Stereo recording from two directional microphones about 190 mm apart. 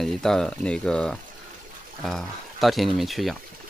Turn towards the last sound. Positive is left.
turn(degrees=0)  # may be behind; listen again after turning